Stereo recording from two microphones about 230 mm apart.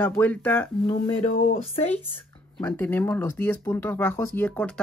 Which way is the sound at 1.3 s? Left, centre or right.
Left.